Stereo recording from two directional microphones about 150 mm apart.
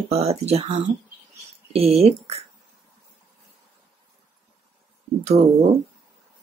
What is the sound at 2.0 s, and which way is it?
Speech, 45° right (ahead or behind).